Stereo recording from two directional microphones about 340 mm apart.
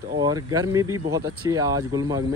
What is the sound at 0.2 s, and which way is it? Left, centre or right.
Speech, centre.